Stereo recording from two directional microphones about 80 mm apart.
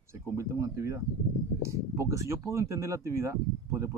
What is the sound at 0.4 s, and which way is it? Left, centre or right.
Speech, right.